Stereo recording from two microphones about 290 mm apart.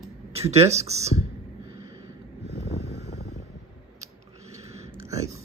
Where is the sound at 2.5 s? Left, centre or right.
Left.